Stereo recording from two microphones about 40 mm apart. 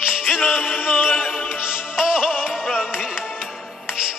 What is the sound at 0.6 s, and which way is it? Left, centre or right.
Music, left.